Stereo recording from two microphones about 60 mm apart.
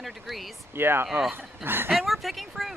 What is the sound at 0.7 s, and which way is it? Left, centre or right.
Speech, right.